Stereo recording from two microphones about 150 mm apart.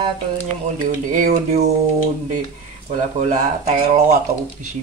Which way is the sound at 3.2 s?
50° right (ahead or behind).